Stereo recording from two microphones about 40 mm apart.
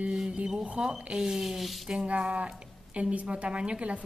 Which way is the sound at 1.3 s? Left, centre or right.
Centre.